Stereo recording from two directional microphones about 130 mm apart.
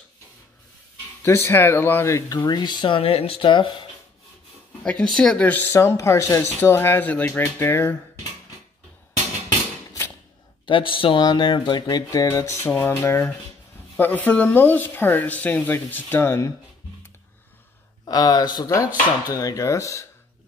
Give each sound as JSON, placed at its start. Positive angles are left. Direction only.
{"t": 1.2, "sound": "speech", "side_deg": 20}
{"t": 4.8, "sound": "speech", "side_deg": 5}
{"t": 10.6, "sound": "speech", "side_deg": 40}
{"t": 18.0, "sound": "speech", "side_deg": 30}